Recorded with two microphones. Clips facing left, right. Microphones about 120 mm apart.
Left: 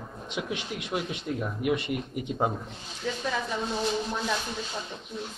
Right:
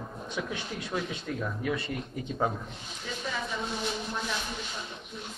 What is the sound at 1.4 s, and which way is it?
A man's voice, 15° left (ahead or behind).